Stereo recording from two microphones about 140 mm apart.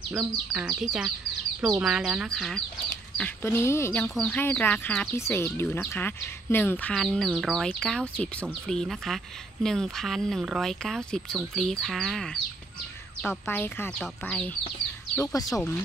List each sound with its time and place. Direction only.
0.5 s speech: 5° right (ahead or behind)
3.4 s speech: 20° left (ahead or behind)
4.0 s speech: 5° left (ahead or behind)
13.2 s speech: 15° left (ahead or behind)
15.1 s speech: 25° left (ahead or behind)